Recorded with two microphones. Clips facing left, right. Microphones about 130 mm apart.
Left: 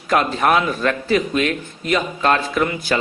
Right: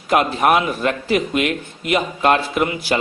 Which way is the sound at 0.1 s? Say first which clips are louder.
Right 1 dB; 15° right (ahead or behind).